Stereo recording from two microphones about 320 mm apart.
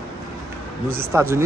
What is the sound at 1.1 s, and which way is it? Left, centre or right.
Speech, centre.